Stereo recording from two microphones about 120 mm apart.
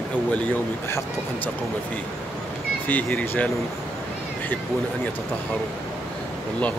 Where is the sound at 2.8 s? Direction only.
15° left (ahead or behind).